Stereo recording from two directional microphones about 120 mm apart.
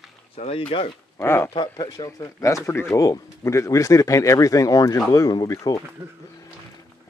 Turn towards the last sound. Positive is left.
turn(degrees=30)  # may be behind; listen again after turning